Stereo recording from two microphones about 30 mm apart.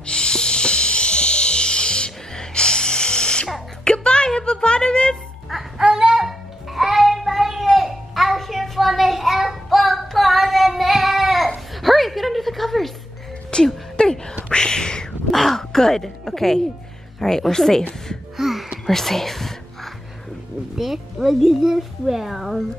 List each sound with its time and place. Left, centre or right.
0.0 s music: left
3.8 s a sound: left
5.5 s music: centre
5.9 s a sound: right
6.2 s a sound: centre
8.7 s child singing: centre
13.5 s a sound: left
15.3 s crow: centre
17.2 s speech: centre
18.3 s music: centre
18.9 s whispering: centre
20.7 s music: centre
21.4 s speech: centre